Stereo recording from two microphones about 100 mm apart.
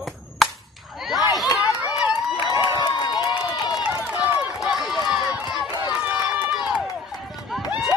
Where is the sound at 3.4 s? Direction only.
40° left (ahead or behind).